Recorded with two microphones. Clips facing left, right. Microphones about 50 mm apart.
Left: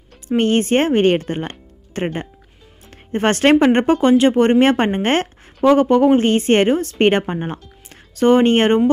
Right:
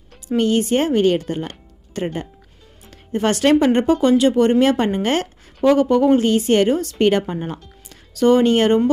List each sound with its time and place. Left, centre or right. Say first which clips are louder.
0.4 s speech: left 2 dB; left
3.1 s speech: left 2 dB; left